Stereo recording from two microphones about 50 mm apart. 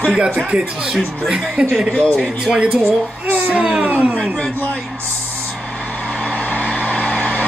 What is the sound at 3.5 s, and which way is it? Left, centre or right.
Speech, right.